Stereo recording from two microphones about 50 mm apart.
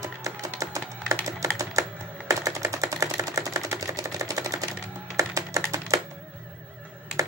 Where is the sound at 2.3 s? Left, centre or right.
Right.